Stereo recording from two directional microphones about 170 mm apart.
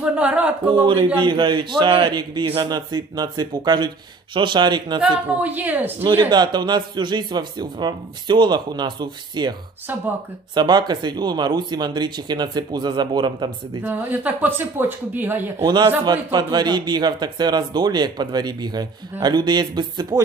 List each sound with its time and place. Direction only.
0.0 s speech: 5° right (ahead or behind)
0.8 s a man's voice: 30° right (ahead or behind)
5.0 s speech: 10° right (ahead or behind)
6.1 s a man's voice: 25° right (ahead or behind)
13.8 s speech: 10° right (ahead or behind)
15.6 s a man's voice: 25° right (ahead or behind)